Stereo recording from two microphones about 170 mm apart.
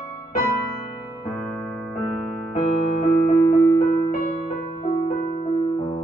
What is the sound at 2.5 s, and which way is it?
Music, 40° left (ahead or behind).